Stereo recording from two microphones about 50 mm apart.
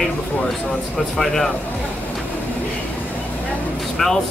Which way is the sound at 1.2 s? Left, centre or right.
Centre.